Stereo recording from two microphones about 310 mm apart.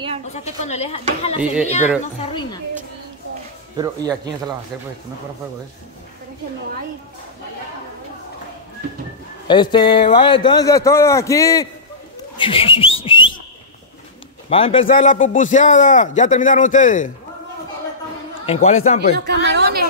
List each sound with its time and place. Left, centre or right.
0.3 s a man's voice: left
1.4 s a child's voice: centre
3.7 s speech: centre
9.5 s a man's voice: centre
12.4 s whistling: centre
14.5 s a man's voice: centre
18.4 s a man's voice: centre
19.1 s chatter: right